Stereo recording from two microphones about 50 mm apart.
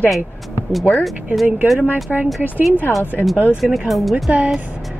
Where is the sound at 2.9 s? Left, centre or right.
Left.